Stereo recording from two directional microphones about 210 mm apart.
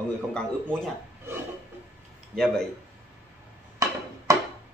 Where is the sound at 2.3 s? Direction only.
Centre (ahead or behind).